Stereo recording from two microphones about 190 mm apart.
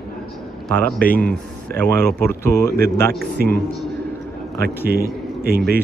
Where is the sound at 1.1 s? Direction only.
50° left (ahead or behind).